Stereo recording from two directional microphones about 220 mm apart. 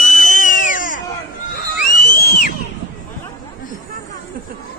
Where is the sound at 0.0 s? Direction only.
35° left (ahead or behind).